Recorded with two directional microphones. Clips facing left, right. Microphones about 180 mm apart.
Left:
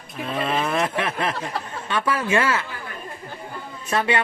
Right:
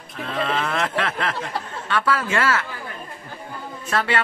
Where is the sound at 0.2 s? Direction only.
15° left (ahead or behind).